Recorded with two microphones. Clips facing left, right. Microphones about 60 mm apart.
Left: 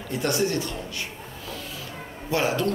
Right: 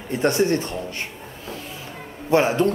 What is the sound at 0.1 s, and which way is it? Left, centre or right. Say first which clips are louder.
Speech: right 5 dB; right.